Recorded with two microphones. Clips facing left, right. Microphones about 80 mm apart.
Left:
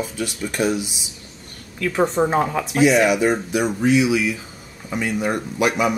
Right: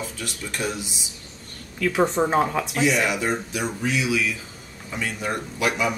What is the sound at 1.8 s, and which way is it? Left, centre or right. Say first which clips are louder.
Speech: left 2 dB; centre.